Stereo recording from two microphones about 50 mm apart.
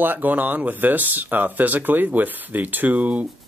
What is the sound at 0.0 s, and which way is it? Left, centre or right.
Speech, right.